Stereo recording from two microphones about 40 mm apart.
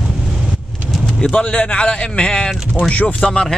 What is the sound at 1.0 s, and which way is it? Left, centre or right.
Bird, centre.